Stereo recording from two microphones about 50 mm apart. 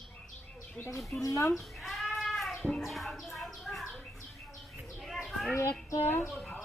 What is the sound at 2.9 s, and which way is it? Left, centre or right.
Bird, centre.